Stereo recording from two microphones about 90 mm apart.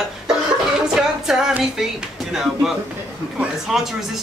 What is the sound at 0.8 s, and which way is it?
Music, 5° right (ahead or behind).